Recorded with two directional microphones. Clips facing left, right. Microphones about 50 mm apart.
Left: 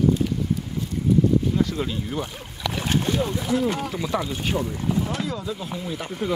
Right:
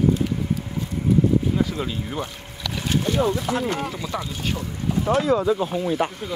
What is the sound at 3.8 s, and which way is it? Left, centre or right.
Speech, centre.